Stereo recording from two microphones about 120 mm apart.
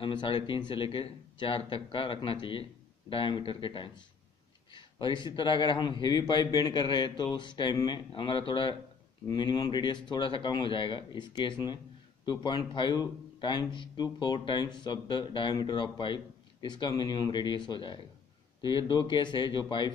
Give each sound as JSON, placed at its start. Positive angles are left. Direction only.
{"t": 0.0, "sound": "a man's voice", "side_deg": 40}